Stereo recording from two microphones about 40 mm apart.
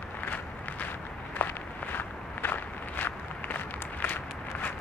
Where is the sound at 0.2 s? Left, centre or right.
Left.